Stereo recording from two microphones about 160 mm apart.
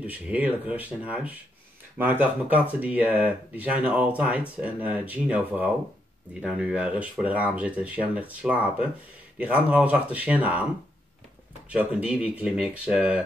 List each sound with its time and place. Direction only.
0.0 s speech: 10° right (ahead or behind)
11.7 s speech: 10° right (ahead or behind)